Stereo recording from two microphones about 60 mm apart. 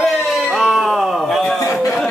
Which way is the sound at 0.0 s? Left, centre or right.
Centre.